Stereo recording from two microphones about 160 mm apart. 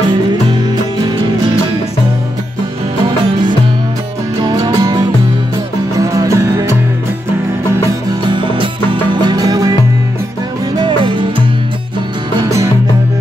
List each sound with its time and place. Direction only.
4.4 s music: 25° right (ahead or behind)
8.3 s music: 30° right (ahead or behind)
10.8 s music: 30° right (ahead or behind)
12.4 s music: 20° right (ahead or behind)